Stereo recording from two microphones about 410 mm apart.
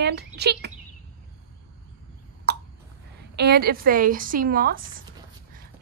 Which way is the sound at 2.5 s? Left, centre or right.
Right.